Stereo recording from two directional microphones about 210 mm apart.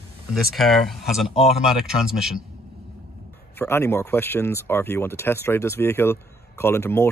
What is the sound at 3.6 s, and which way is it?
Speech, 10° left (ahead or behind).